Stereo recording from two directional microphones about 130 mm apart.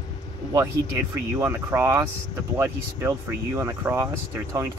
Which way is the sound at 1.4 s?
20° right (ahead or behind).